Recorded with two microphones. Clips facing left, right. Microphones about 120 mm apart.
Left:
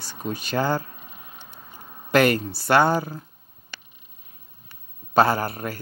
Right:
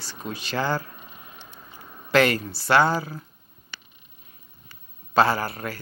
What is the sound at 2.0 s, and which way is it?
Speech, 45° left (ahead or behind).